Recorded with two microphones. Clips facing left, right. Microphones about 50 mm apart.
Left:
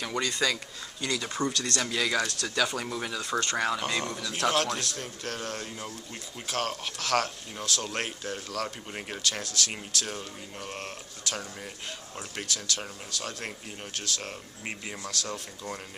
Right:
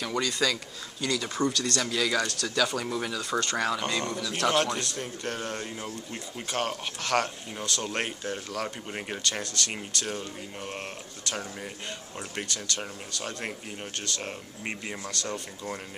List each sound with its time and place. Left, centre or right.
0.0 s speech: centre
1.5 s speech: left
1.8 s a man's voice: centre